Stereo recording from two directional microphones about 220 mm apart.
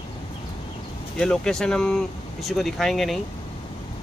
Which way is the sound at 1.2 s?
Centre (ahead or behind).